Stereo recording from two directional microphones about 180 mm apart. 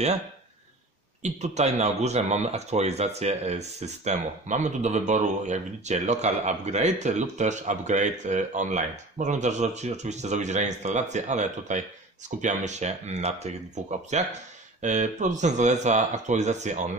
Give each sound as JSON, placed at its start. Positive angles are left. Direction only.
{"t": 1.2, "sound": "speech", "side_deg": -40}